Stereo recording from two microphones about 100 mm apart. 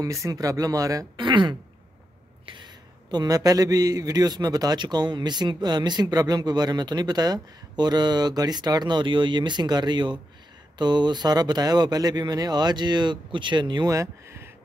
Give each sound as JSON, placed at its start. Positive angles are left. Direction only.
{"t": 0.0, "sound": "speech", "side_deg": -35}
{"t": 1.2, "sound": "a man's voice", "side_deg": -50}
{"t": 13.8, "sound": "speech", "side_deg": -30}